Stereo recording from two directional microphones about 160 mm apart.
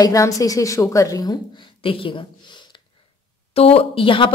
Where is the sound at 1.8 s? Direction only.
35° left (ahead or behind).